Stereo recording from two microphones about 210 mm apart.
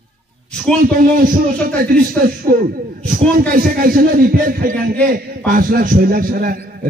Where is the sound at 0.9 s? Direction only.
40° right (ahead or behind).